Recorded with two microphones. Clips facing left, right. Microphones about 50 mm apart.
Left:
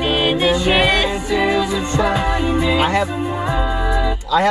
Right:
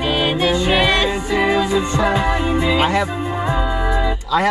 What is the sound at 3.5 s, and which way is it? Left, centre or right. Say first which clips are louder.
Music: even; centre.